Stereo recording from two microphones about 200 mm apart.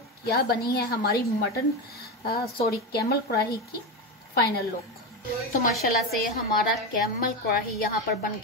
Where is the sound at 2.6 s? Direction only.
50° left (ahead or behind).